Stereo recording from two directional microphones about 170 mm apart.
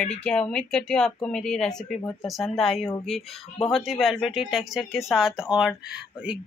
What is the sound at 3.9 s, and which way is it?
Speech, centre (ahead or behind).